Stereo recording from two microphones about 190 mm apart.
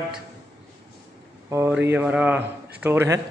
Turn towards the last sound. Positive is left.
turn(degrees=-15)  # may be behind; listen again after turning